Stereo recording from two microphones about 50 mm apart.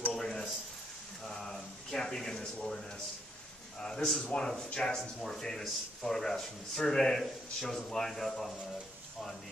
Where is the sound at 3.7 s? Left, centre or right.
Centre.